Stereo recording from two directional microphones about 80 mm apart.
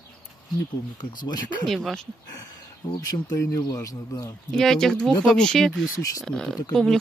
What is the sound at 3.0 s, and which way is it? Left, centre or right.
Speech, left.